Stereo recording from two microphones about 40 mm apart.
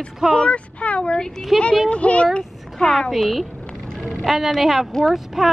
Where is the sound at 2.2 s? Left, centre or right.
Left.